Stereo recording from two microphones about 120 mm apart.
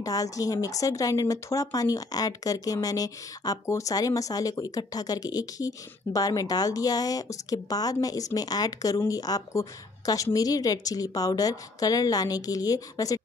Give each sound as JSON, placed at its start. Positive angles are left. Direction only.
{"t": 0.0, "sound": "speech", "side_deg": 30}